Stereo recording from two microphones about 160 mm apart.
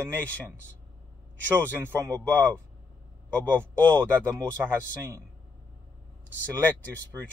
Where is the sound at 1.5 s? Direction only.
10° right (ahead or behind).